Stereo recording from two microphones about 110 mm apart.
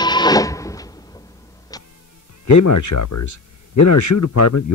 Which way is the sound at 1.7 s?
35° left (ahead or behind).